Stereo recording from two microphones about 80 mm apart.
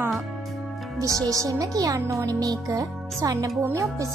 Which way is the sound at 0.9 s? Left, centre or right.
Right.